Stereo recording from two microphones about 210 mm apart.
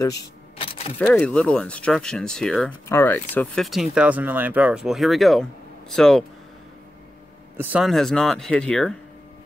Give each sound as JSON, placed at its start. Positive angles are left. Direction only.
{"t": 0.0, "sound": "camera", "side_deg": 20}
{"t": 0.9, "sound": "speech", "side_deg": 5}
{"t": 7.5, "sound": "speech", "side_deg": -5}